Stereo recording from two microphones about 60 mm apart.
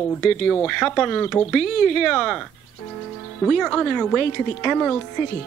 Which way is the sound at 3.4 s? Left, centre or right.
Centre.